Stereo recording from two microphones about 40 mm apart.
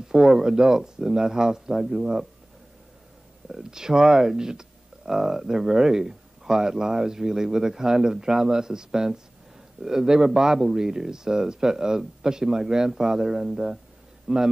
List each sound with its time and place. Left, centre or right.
0.1 s speech: centre
3.4 s a man's voice: centre